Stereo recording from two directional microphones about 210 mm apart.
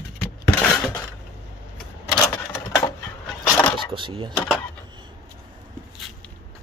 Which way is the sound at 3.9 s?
25° right (ahead or behind).